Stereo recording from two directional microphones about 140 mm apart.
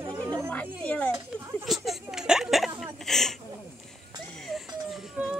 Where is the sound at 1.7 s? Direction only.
Centre (ahead or behind).